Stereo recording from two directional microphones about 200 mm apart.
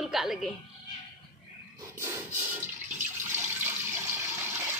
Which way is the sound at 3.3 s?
10° right (ahead or behind).